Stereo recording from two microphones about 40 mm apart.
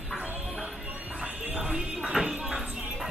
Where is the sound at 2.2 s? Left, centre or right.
Centre.